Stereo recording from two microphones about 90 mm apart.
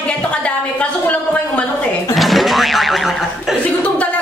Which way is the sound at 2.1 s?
Centre (ahead or behind).